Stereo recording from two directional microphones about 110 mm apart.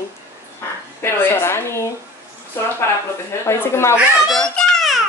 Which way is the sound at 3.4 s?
25° left (ahead or behind).